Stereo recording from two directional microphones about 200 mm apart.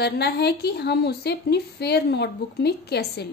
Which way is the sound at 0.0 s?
55° left (ahead or behind).